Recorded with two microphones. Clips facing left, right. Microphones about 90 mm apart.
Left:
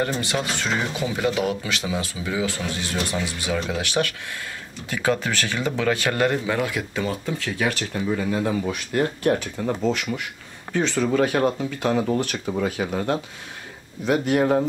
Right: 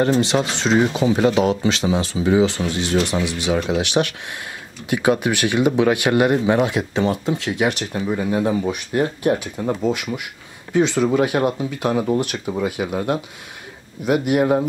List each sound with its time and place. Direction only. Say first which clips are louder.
0.0 s speech: right 7 dB; 25° right (ahead or behind); by 14.7 s 10° right (ahead or behind)